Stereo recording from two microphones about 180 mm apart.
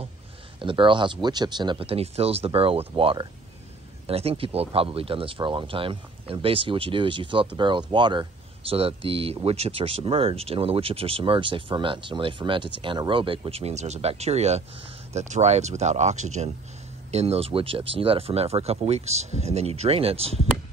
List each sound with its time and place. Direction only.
0.6 s speech: 30° right (ahead or behind)